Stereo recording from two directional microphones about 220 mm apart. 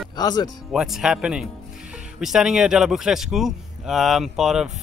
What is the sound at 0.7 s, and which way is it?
A man's voice, centre (ahead or behind).